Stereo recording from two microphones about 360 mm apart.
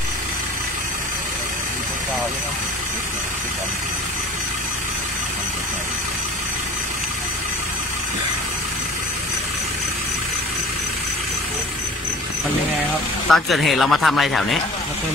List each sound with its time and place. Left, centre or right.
13.3 s speech: centre